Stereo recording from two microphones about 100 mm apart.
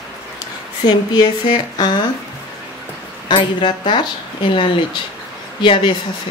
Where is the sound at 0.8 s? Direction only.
45° left (ahead or behind).